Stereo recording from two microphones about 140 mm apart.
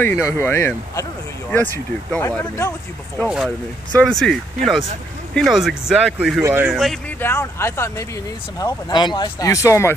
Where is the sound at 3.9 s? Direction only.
5° left (ahead or behind).